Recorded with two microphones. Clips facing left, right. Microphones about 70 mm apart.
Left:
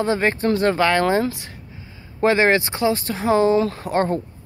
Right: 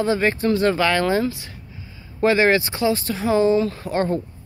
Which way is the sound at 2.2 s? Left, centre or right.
Left.